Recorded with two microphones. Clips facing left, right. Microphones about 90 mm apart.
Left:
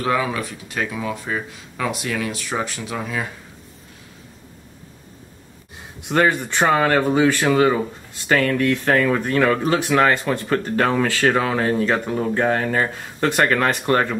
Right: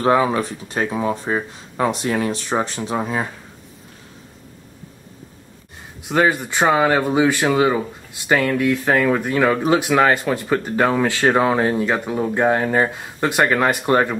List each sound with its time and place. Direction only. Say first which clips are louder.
0.0 s speech: right 5 dB; 35° right (ahead or behind)
6.0 s speech: right 1 dB; 5° right (ahead or behind)